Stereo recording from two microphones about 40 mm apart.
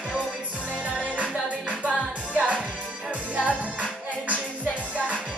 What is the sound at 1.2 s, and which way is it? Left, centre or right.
Music, right.